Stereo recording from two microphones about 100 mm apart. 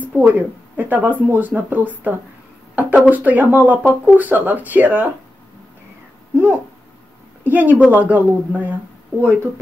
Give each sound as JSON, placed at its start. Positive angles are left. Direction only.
{"t": 0.0, "sound": "speech", "side_deg": -15}
{"t": 6.3, "sound": "speech", "side_deg": -25}